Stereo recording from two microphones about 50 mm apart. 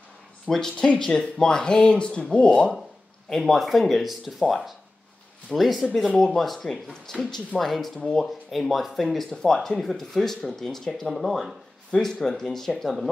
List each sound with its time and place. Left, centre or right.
0.5 s speech: centre
3.3 s speech: centre
6.7 s speech: centre